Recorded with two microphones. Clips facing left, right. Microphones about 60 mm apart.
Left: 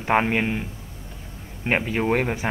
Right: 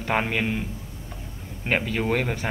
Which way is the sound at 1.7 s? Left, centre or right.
Left.